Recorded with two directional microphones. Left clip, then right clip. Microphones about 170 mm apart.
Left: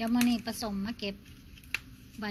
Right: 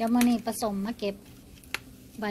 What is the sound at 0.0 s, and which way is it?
A woman's voice, 20° right (ahead or behind).